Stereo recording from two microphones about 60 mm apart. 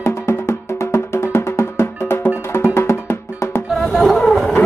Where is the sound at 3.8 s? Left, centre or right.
Centre.